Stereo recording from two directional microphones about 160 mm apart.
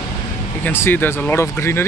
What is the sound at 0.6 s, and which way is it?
Speech, 15° left (ahead or behind).